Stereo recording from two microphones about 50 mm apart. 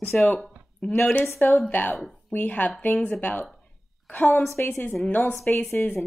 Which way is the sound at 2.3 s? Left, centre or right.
Left.